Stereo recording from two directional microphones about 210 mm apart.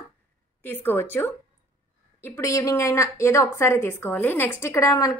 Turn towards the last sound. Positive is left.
turn(degrees=15)  # may be behind; listen again after turning